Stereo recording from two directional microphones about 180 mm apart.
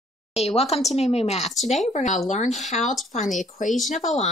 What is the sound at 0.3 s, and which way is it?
A woman's voice, 35° left (ahead or behind).